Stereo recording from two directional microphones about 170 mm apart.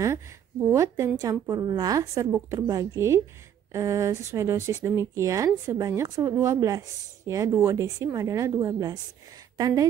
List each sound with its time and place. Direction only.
0.0 s a woman's voice: 15° right (ahead or behind)